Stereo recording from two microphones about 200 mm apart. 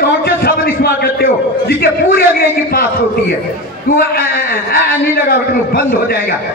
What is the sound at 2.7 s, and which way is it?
A man's voice, 50° left (ahead or behind).